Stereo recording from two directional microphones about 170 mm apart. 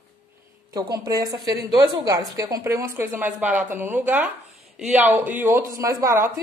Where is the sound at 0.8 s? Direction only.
25° right (ahead or behind).